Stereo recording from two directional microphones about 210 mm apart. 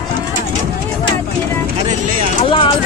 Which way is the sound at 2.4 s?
25° left (ahead or behind).